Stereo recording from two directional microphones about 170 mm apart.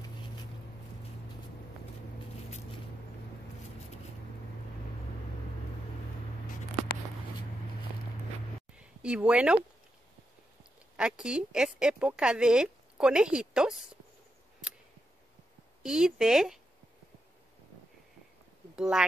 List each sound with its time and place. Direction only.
8.7 s a sound: 5° right (ahead or behind)
11.0 s a woman's voice: 5° right (ahead or behind)
15.8 s a woman's voice: 5° right (ahead or behind)
18.8 s a woman's voice: 5° right (ahead or behind)